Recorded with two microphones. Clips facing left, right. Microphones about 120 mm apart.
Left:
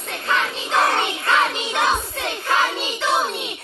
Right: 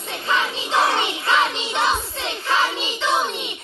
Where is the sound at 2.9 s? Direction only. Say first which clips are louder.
Left 1 dB; 5° left (ahead or behind).